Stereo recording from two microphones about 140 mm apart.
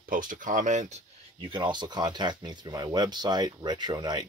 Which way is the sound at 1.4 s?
35° right (ahead or behind).